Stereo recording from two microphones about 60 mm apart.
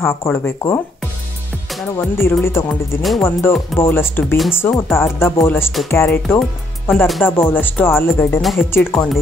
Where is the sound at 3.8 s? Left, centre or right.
Left.